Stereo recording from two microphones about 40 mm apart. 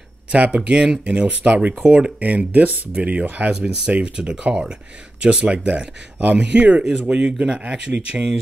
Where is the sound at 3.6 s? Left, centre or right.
Centre.